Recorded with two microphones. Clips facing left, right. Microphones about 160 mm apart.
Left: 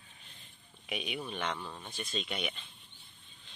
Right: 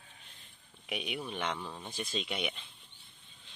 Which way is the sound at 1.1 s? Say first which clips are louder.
Right 1 dB; 5° right (ahead or behind).